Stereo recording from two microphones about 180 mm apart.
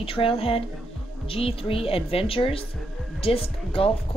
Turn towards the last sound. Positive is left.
turn(degrees=30)  # may be behind; listen again after turning